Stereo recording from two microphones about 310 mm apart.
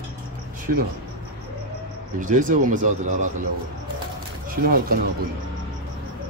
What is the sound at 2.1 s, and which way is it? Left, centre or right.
Speech, right.